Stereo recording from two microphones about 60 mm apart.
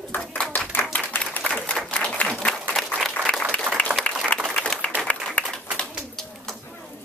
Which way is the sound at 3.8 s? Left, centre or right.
Left.